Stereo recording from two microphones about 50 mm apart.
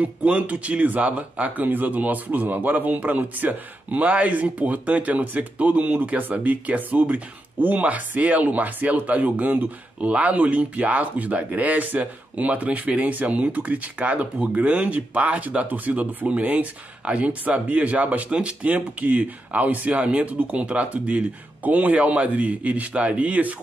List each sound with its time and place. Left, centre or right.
0.0 s speech: right